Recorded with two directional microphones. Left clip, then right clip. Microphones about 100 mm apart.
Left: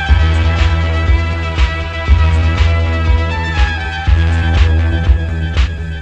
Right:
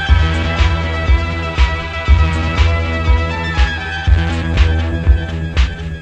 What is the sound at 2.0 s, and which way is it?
Music, 10° right (ahead or behind).